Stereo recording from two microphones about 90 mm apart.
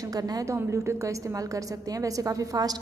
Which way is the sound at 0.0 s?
40° right (ahead or behind).